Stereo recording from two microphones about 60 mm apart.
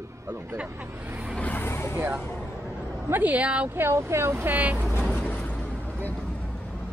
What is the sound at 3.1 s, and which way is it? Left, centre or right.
Speech, right.